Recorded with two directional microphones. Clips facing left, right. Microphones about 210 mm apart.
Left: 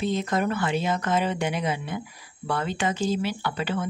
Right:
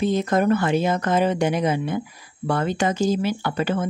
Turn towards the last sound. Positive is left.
turn(degrees=-45)  # may be behind; listen again after turning